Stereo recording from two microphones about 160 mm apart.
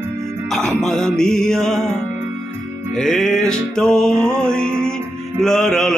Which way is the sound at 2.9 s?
5° left (ahead or behind).